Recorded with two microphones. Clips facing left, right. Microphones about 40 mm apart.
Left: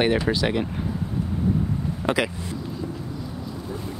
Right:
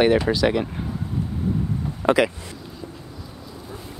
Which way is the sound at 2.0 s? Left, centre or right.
Right.